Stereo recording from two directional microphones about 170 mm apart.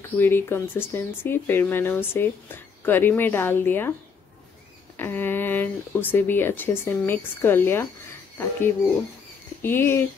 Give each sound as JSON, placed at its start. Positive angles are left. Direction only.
{"t": 0.0, "sound": "speech", "side_deg": 10}
{"t": 4.9, "sound": "speech", "side_deg": 10}